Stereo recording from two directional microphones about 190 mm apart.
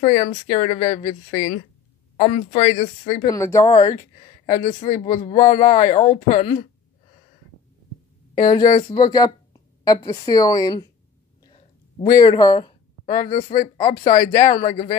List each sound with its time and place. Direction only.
0.0 s a man's voice: 35° left (ahead or behind)
3.3 s speech: 15° left (ahead or behind)
4.2 s a man's voice: 40° left (ahead or behind)
8.4 s a woman's voice: 20° left (ahead or behind)
11.4 s a sound: 30° left (ahead or behind)
12.2 s speech: 20° left (ahead or behind)
13.3 s a man's voice: 40° left (ahead or behind)
14.2 s speech: 20° left (ahead or behind)
14.5 s a man's voice: 40° left (ahead or behind)